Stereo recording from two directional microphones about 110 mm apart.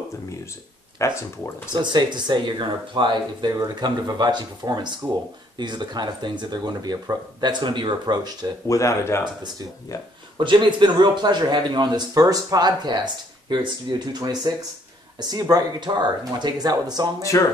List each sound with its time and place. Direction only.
0.9 s speech: 25° left (ahead or behind)
1.7 s a man's voice: 45° right (ahead or behind)
8.6 s speech: 30° left (ahead or behind)
10.3 s a man's voice: 45° right (ahead or behind)
17.2 s speech: 30° left (ahead or behind)